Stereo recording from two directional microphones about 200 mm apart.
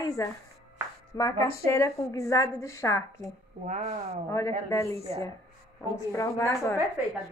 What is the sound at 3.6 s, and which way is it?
Speech, 35° right (ahead or behind).